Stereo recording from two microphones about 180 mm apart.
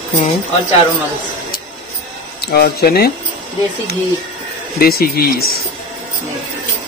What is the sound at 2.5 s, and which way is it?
Speech, 60° left (ahead or behind).